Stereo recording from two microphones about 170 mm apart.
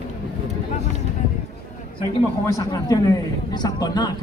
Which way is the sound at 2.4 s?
20° left (ahead or behind).